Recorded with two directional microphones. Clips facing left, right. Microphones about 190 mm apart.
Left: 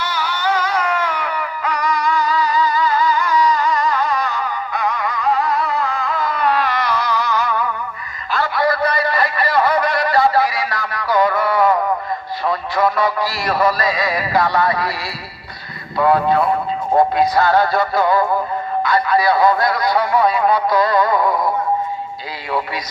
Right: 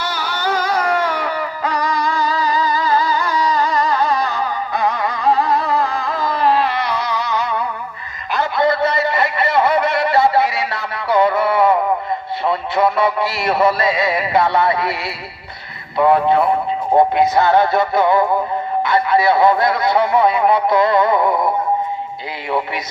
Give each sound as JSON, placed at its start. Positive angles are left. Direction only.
{"t": 0.0, "sound": "music", "side_deg": -35}
{"t": 8.3, "sound": "a sound", "side_deg": -20}
{"t": 12.4, "sound": "speech", "side_deg": -25}
{"t": 16.0, "sound": "speech", "side_deg": -25}